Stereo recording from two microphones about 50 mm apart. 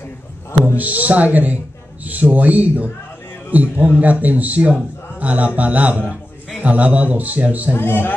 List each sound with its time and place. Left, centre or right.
0.7 s a man's voice: right
7.7 s a man's voice: left